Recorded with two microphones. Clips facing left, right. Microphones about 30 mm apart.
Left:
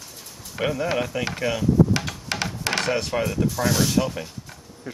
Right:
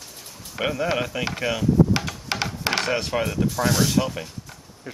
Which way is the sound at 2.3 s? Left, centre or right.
Centre.